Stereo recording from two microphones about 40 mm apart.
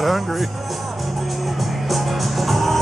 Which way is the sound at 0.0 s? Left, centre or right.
Centre.